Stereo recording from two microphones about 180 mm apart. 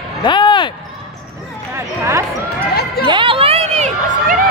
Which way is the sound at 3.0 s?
25° right (ahead or behind).